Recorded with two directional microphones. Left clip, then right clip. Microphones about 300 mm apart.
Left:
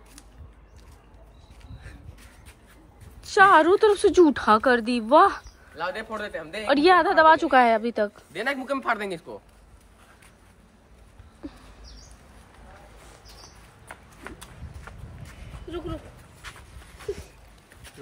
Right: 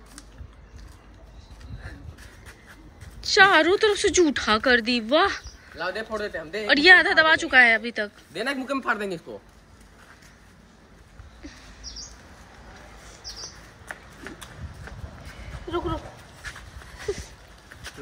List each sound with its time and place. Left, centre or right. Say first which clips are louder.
3.2 s a woman's voice: left 1 dB; centre
5.8 s speech: right 1 dB; left
6.7 s a woman's voice: right 3 dB; centre
8.3 s speech: even; left